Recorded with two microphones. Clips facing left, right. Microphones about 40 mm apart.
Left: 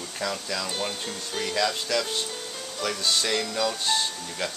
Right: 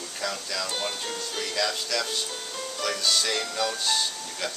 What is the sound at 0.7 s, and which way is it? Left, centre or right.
Speech, centre.